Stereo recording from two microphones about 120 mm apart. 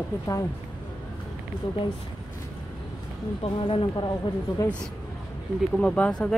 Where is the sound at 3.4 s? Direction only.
45° left (ahead or behind).